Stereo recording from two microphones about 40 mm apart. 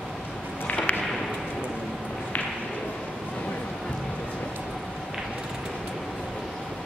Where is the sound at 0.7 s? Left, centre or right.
Left.